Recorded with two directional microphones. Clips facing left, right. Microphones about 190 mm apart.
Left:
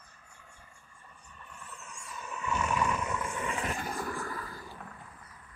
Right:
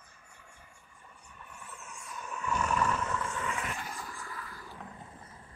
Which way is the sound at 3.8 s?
55° left (ahead or behind).